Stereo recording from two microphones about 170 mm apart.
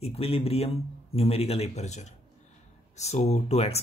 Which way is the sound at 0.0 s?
35° left (ahead or behind).